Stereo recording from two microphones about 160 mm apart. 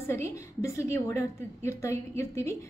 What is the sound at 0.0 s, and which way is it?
A woman's voice, 15° left (ahead or behind).